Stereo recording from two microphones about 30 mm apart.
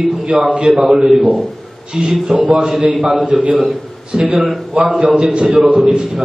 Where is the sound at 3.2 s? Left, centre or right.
Right.